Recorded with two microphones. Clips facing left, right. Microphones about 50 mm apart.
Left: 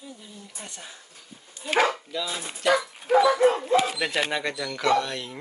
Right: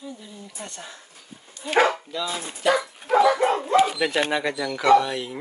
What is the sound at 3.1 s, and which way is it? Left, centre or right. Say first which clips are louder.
Speech: even; right.